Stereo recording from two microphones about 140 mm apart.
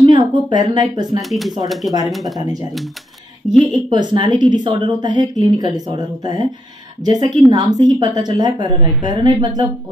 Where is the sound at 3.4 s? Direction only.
5° right (ahead or behind).